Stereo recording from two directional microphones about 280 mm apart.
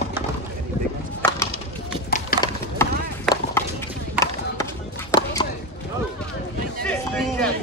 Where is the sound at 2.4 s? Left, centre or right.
Centre.